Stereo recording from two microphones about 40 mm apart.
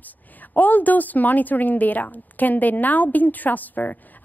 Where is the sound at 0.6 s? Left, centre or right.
Left.